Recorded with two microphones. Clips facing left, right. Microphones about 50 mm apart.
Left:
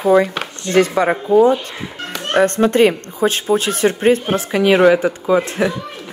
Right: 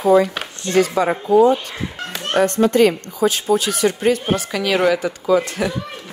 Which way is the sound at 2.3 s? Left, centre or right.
Left.